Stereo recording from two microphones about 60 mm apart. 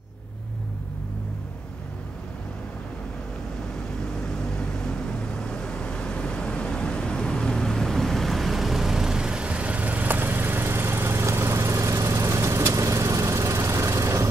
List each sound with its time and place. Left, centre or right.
4.4 s vehicle: centre; by 14.2 s right